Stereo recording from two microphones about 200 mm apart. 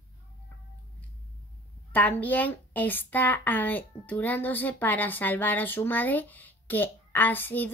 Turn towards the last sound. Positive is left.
turn(degrees=10)  # may be behind; listen again after turning